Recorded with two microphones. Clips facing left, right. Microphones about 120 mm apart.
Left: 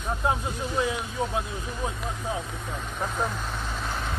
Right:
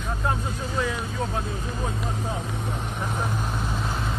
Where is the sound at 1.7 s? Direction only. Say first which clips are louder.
Even; 25° right (ahead or behind).